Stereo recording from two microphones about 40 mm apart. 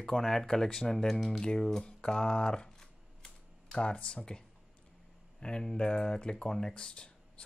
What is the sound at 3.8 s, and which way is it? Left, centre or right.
Speech, left.